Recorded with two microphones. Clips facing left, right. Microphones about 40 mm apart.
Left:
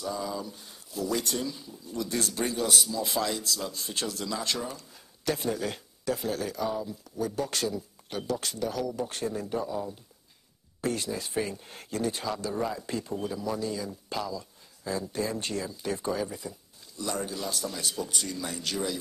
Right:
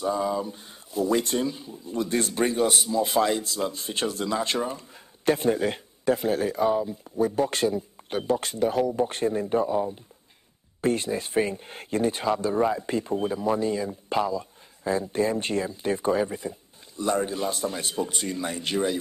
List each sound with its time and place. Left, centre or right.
0.0 s speech: right